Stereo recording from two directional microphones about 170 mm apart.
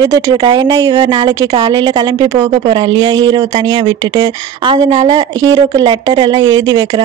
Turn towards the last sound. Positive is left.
turn(degrees=-20)  # may be behind; listen again after turning